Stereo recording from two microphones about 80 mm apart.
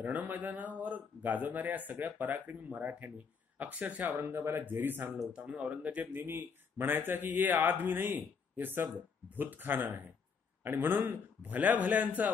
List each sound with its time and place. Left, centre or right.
0.0 s speech: centre